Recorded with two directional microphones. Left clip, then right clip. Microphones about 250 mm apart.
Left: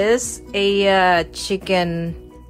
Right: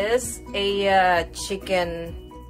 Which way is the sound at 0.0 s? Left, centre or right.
Left.